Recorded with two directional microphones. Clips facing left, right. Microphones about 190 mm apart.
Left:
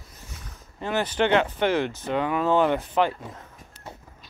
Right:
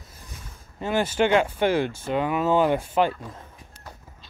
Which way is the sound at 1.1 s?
10° right (ahead or behind).